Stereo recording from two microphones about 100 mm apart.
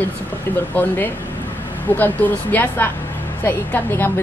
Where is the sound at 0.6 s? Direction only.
20° left (ahead or behind).